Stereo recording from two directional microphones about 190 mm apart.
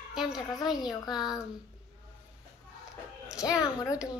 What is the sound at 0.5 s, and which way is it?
Speech, 20° left (ahead or behind).